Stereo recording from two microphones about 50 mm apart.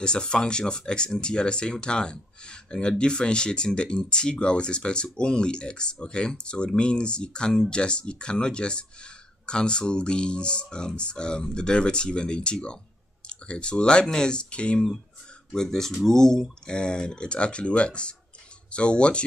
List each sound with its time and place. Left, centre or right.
0.0 s speech: centre
15.5 s speech: centre